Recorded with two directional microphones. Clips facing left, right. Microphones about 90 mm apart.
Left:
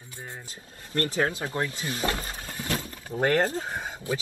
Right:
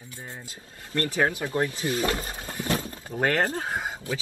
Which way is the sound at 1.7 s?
25° right (ahead or behind).